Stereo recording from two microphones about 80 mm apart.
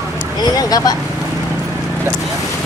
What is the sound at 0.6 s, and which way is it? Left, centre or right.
Speech, left.